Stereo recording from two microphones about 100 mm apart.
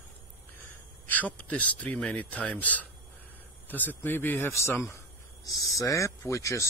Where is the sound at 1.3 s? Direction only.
15° left (ahead or behind).